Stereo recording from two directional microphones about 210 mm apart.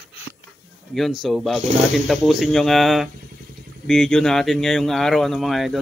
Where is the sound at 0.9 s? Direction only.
Centre (ahead or behind).